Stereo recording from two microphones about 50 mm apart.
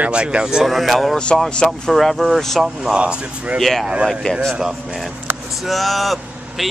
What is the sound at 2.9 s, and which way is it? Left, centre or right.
Speech, right.